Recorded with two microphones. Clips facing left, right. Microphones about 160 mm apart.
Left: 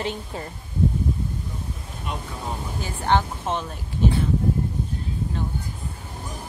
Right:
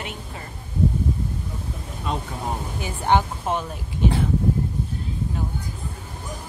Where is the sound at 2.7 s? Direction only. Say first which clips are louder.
Right 1 dB; 15° right (ahead or behind).